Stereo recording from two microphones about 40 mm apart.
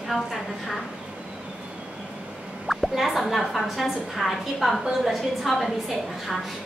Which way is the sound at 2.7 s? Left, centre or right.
Centre.